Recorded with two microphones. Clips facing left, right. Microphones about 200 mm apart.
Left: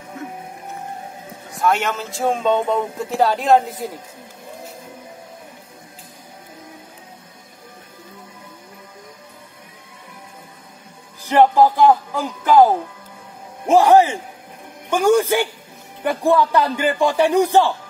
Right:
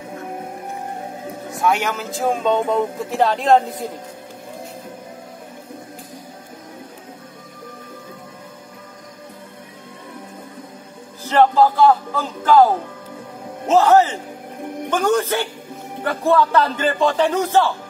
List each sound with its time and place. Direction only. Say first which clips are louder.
1.5 s speech: even; centre (ahead or behind)
11.2 s a man's voice: left 1 dB; 15° left (ahead or behind)